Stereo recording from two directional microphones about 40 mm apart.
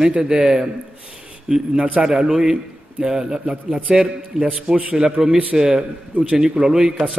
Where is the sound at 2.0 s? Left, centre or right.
Centre.